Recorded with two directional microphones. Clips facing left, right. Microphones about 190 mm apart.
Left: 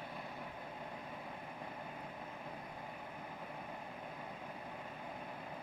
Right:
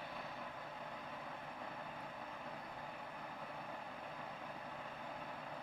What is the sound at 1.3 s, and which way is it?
Vehicle, 10° left (ahead or behind).